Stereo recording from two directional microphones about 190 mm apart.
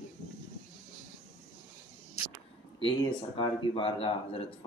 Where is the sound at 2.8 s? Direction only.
25° left (ahead or behind).